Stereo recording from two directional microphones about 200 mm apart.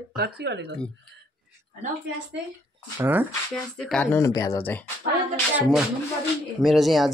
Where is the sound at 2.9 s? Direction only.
10° right (ahead or behind).